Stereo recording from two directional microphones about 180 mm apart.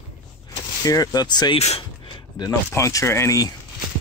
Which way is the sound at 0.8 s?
20° left (ahead or behind).